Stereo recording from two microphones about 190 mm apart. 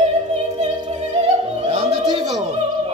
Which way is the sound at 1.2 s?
25° right (ahead or behind).